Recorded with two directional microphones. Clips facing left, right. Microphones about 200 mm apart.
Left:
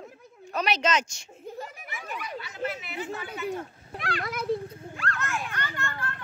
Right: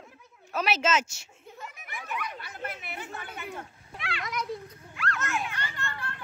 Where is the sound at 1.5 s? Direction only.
35° left (ahead or behind).